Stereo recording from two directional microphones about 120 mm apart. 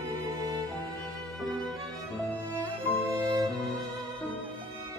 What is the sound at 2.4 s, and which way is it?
Music, 25° right (ahead or behind).